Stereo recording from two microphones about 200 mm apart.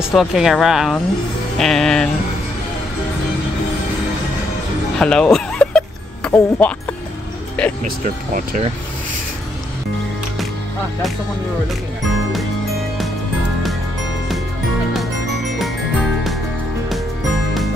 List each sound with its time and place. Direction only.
0.1 s speech: centre (ahead or behind)
4.9 s music: 5° left (ahead or behind)
8.0 s speech: 40° right (ahead or behind)
15.0 s music: centre (ahead or behind)